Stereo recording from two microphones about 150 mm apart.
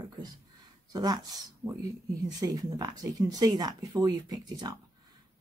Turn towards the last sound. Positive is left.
turn(degrees=-25)  # may be behind; listen again after turning